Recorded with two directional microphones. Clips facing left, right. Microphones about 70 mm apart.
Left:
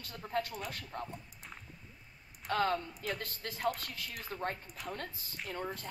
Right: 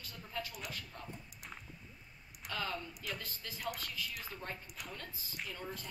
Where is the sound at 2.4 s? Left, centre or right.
Left.